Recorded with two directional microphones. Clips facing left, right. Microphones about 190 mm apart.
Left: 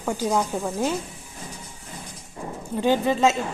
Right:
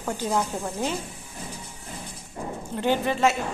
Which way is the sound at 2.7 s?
15° left (ahead or behind).